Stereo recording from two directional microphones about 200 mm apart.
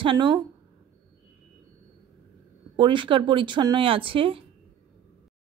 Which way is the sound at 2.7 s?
25° right (ahead or behind).